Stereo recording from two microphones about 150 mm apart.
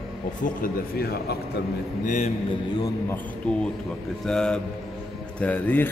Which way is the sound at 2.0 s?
55° left (ahead or behind).